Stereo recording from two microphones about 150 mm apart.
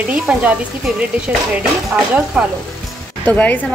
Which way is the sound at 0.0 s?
10° right (ahead or behind).